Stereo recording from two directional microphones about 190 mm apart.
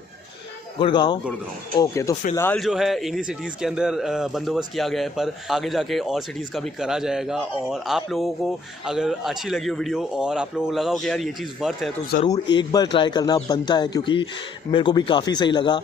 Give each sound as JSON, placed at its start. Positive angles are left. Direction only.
{"t": 0.7, "sound": "speech", "side_deg": 25}
{"t": 2.6, "sound": "a man's voice", "side_deg": 0}
{"t": 12.5, "sound": "speech", "side_deg": 20}